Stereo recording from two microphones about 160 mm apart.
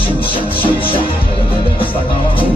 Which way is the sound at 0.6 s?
35° left (ahead or behind).